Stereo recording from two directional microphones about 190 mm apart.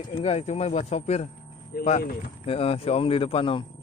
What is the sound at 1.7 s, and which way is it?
Speech, 50° left (ahead or behind).